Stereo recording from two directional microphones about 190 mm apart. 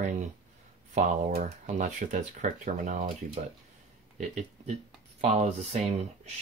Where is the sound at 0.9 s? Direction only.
40° right (ahead or behind).